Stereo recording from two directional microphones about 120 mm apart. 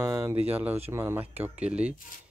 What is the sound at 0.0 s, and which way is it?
Speech, 25° right (ahead or behind).